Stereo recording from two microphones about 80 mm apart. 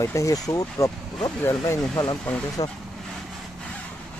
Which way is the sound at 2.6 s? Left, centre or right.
Left.